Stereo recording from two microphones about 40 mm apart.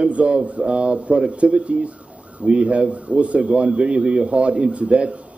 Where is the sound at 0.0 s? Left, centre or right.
Right.